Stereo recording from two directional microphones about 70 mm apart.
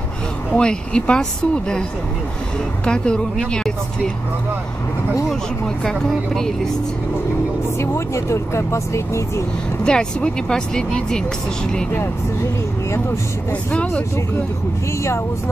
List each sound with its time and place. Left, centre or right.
0.5 s speech: centre
5.9 s speech: centre
8.1 s speech: left
9.8 s speech: centre
13.7 s speech: centre